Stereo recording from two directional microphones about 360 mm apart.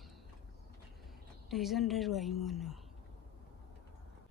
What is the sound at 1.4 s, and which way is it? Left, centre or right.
A woman's voice, centre.